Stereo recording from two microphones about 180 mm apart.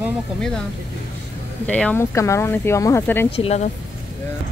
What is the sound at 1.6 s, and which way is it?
Speech, 5° left (ahead or behind).